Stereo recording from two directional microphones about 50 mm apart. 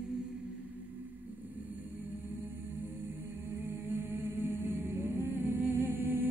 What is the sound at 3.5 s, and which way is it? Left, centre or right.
Music, right.